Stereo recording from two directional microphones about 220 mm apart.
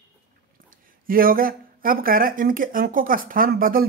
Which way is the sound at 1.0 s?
40° right (ahead or behind).